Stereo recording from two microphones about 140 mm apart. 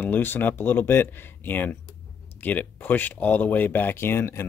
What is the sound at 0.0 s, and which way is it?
Speech, 15° left (ahead or behind).